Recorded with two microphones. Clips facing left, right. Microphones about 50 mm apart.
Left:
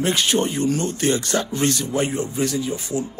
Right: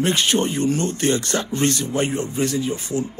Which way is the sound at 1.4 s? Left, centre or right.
Right.